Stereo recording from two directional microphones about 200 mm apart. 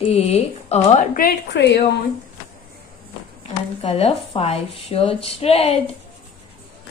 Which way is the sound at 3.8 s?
30° left (ahead or behind).